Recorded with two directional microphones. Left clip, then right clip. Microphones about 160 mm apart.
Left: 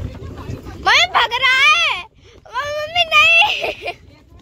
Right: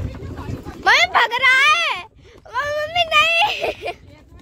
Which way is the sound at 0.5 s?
15° right (ahead or behind).